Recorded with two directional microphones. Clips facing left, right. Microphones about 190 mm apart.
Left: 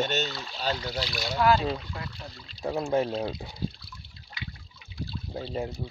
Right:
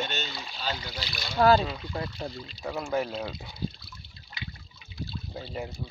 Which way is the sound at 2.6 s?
30° left (ahead or behind).